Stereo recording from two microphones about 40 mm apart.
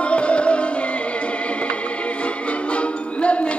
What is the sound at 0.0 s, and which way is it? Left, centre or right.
Music, left.